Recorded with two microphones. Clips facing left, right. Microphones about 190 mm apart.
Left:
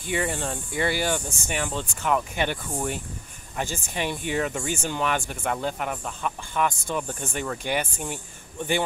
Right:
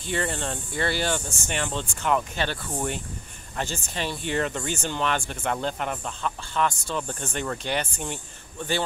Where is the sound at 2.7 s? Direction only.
Centre (ahead or behind).